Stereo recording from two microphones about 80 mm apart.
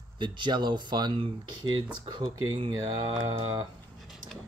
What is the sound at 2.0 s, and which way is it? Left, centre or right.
Speech, right.